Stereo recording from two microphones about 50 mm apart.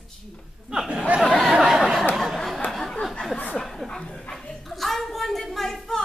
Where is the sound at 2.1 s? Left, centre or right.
Centre.